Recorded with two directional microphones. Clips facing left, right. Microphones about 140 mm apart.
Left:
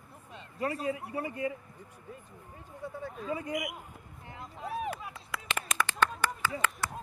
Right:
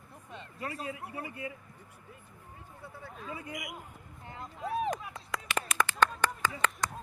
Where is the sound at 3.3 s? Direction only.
40° left (ahead or behind).